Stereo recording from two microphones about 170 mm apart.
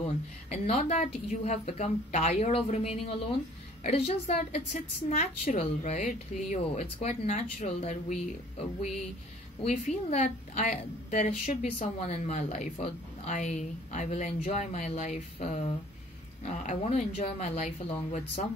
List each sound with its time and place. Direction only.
0.0 s a woman's voice: 35° left (ahead or behind)